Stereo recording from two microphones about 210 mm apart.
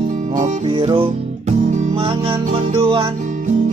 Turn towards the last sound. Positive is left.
turn(degrees=-25)  # may be behind; listen again after turning